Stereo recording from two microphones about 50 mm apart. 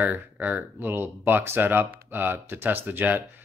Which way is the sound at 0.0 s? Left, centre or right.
Right.